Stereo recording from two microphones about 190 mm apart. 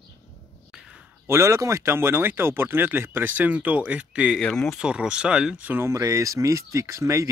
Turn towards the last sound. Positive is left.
turn(degrees=-15)  # may be behind; listen again after turning